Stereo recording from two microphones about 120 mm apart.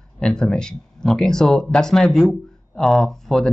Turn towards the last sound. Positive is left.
turn(degrees=5)  # may be behind; listen again after turning